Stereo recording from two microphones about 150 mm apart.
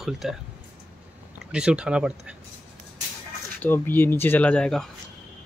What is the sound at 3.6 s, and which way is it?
Speech, 15° left (ahead or behind).